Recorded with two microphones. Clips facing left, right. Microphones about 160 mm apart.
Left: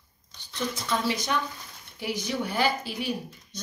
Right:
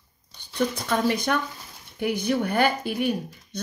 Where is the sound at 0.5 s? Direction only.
55° right (ahead or behind).